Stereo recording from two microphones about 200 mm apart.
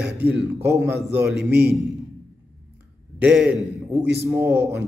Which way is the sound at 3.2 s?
5° right (ahead or behind).